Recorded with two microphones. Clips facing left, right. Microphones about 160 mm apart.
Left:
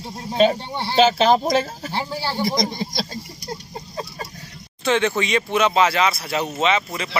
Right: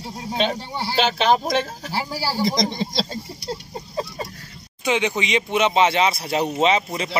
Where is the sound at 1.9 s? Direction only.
5° right (ahead or behind).